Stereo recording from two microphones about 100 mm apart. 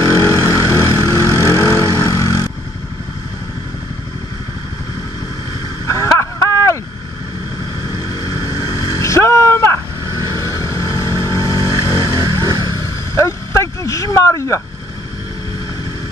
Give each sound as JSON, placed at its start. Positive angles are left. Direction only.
{"t": 0.0, "sound": "vehicle", "side_deg": 35}
{"t": 5.9, "sound": "vehicle", "side_deg": 30}
{"t": 8.0, "sound": "boat", "side_deg": 35}
{"t": 10.0, "sound": "vehicle", "side_deg": -40}
{"t": 10.4, "sound": "vehicle", "side_deg": 35}
{"t": 12.0, "sound": "vehicle", "side_deg": -45}
{"t": 13.5, "sound": "a sound", "side_deg": 30}